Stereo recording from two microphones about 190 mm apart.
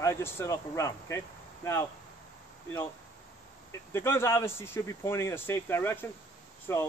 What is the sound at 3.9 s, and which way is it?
Speech, 15° left (ahead or behind).